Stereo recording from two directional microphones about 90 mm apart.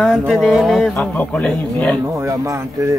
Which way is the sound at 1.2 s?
15° left (ahead or behind).